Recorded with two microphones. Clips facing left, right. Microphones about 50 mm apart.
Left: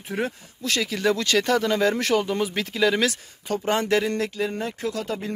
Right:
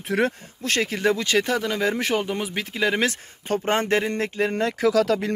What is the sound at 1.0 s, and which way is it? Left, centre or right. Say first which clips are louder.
Speech: left 1 dB; right.